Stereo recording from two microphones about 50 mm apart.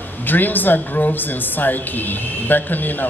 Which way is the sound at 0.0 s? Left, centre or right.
Left.